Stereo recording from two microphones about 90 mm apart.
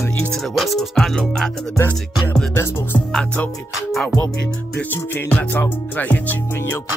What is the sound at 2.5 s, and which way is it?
Music, 25° left (ahead or behind).